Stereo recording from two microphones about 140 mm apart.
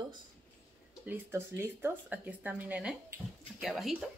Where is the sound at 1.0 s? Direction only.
15° right (ahead or behind).